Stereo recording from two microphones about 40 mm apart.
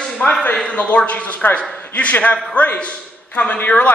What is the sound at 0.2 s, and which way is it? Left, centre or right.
A man's voice, left.